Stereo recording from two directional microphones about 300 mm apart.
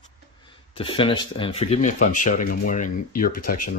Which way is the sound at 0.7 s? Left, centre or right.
Centre.